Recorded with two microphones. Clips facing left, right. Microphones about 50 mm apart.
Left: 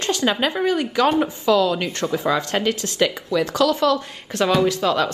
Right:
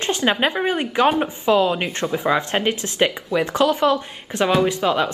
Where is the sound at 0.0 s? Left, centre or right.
Right.